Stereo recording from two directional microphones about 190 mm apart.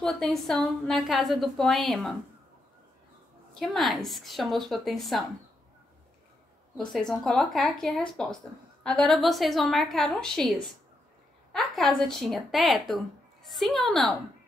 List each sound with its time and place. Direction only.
0.0 s a woman's voice: centre (ahead or behind)
3.5 s a woman's voice: centre (ahead or behind)
6.8 s a woman's voice: 5° left (ahead or behind)